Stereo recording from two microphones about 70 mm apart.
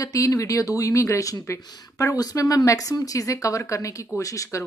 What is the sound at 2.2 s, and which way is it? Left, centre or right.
Speech, left.